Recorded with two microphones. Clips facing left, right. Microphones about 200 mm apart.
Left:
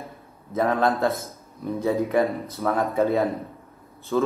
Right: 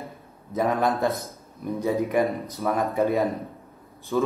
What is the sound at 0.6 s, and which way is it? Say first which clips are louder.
A man's voice: left 1 dB; 15° right (ahead or behind).